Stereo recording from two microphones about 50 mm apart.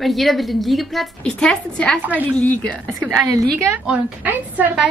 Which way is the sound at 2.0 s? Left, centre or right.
Right.